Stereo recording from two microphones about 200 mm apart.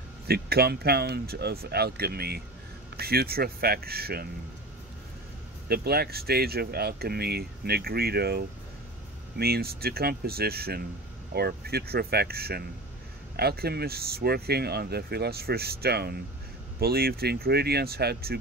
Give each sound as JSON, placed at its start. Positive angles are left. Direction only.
{"t": 0.3, "sound": "speech", "side_deg": -50}
{"t": 5.7, "sound": "speech", "side_deg": -50}